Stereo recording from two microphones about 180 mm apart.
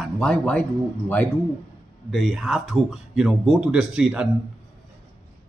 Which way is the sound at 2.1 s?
Centre (ahead or behind).